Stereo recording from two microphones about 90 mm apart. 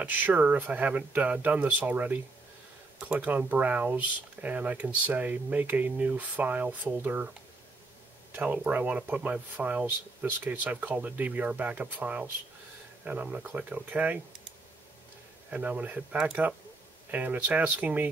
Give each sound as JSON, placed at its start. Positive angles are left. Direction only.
{"t": 0.0, "sound": "speech", "side_deg": -20}
{"t": 8.4, "sound": "speech", "side_deg": -15}
{"t": 15.5, "sound": "speech", "side_deg": -15}